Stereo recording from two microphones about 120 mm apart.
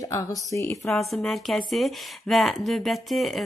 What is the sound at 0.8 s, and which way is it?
A woman's voice, centre (ahead or behind).